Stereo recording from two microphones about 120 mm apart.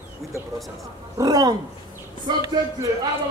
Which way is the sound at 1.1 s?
30° right (ahead or behind).